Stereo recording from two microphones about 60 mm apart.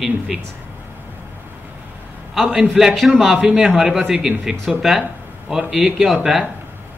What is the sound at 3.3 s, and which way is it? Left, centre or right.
A man's voice, centre.